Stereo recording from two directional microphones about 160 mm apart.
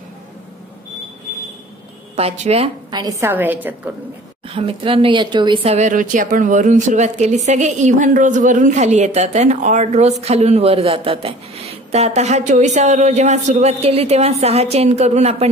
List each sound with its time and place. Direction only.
2.1 s a woman's voice: 40° right (ahead or behind)
2.9 s a woman's voice: 20° right (ahead or behind)
4.5 s a woman's voice: 35° right (ahead or behind)
5.9 s a woman's voice: 55° right (ahead or behind)